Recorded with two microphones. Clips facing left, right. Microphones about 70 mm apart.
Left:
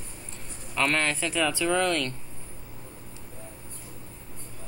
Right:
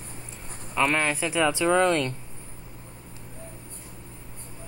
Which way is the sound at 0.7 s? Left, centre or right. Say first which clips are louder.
Right 2 dB; centre.